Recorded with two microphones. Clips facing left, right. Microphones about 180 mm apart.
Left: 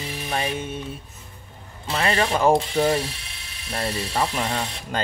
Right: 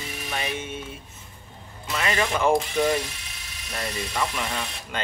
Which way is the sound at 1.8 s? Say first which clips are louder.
Left 3 dB; 30° left (ahead or behind).